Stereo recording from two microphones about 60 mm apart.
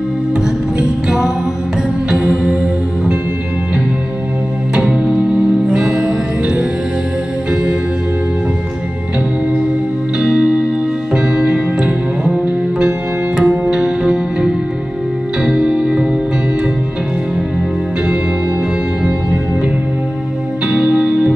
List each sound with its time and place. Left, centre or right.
0.7 s music: centre
4.7 s music: centre
10.1 s music: centre
20.6 s music: centre